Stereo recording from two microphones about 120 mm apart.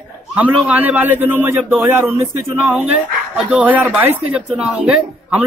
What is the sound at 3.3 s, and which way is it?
Speech, 10° right (ahead or behind).